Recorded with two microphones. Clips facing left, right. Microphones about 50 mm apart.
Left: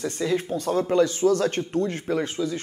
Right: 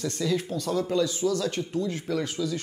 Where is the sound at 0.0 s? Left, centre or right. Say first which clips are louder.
Left 2 dB; left.